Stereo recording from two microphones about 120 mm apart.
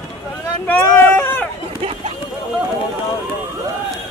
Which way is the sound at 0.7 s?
20° left (ahead or behind).